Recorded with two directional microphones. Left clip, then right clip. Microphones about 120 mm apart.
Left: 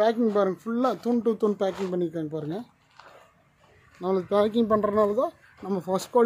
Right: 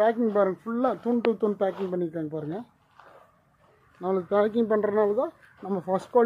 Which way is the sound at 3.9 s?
50° left (ahead or behind).